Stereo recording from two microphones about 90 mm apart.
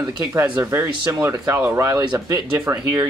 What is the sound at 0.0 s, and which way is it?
Speech, 35° right (ahead or behind).